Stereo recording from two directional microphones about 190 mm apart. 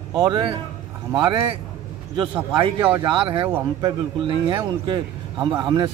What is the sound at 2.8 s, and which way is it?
Speech, 10° right (ahead or behind).